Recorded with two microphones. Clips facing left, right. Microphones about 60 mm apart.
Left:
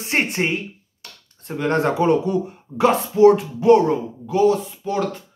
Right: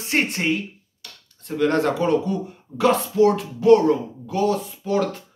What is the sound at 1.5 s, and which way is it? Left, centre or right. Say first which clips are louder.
Speech: even; left.